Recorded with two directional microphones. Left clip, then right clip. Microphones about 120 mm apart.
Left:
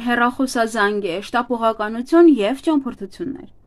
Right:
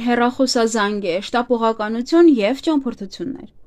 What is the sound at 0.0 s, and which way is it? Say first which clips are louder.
Speech: right 1 dB; 30° right (ahead or behind).